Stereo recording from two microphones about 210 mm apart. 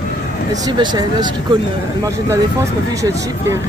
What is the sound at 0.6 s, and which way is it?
Speech, 20° right (ahead or behind).